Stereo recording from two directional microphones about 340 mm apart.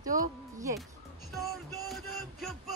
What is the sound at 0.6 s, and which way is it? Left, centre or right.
Speech, centre.